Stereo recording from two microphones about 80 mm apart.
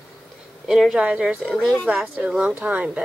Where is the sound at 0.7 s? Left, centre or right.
Centre.